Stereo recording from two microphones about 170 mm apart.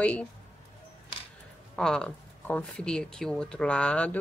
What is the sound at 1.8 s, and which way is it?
Speech, 5° left (ahead or behind).